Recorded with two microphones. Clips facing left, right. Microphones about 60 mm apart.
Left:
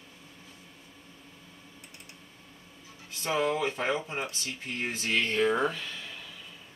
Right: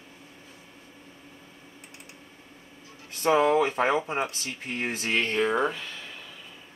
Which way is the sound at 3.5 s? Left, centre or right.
Centre.